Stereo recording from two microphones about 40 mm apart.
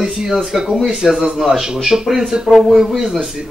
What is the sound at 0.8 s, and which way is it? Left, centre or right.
Speech, centre.